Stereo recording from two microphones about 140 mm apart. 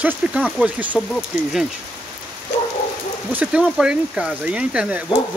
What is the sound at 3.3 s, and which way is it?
Speech, 10° right (ahead or behind).